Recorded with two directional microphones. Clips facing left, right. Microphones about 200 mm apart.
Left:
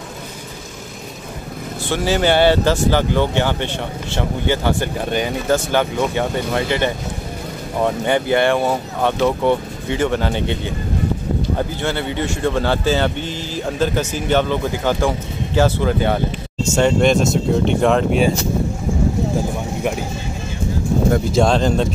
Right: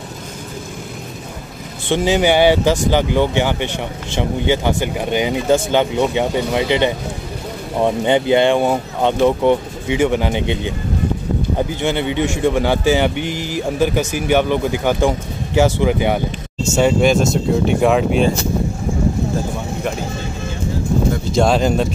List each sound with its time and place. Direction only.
1.9 s speech: 15° right (ahead or behind)
21.3 s speech: 5° right (ahead or behind)